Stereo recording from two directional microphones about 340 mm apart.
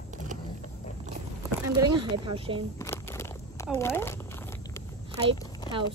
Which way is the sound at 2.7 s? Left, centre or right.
Centre.